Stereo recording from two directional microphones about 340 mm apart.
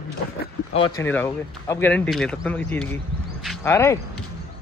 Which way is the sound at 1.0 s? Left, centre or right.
Centre.